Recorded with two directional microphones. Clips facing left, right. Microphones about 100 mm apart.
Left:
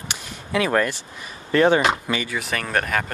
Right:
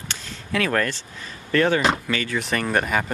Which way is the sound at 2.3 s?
Centre (ahead or behind).